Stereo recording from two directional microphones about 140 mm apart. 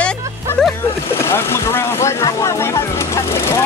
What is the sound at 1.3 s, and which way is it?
Speech, 15° left (ahead or behind).